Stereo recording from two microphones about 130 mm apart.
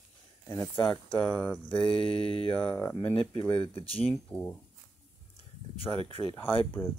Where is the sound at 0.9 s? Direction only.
15° left (ahead or behind).